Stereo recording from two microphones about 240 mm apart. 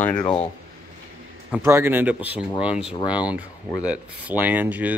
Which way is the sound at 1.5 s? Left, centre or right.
Centre.